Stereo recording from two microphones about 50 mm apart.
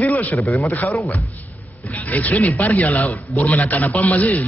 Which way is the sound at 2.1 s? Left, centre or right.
Left.